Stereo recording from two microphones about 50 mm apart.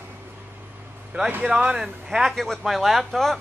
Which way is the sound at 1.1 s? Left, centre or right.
Right.